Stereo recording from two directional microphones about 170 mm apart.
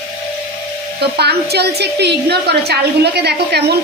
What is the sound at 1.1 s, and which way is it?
A woman's voice, 70° right (ahead or behind).